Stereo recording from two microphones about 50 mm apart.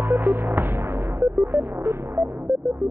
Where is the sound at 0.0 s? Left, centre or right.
Right.